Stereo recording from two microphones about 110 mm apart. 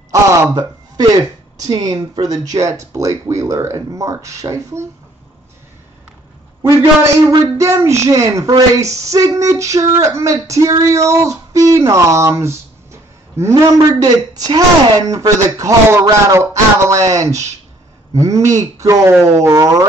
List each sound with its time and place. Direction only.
0.1 s a sound: 30° right (ahead or behind)
1.6 s speech: 35° right (ahead or behind)
7.2 s speech: 30° right (ahead or behind)
13.7 s speech: 35° right (ahead or behind)